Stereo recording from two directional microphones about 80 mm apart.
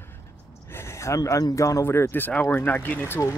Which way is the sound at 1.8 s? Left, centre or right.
Left.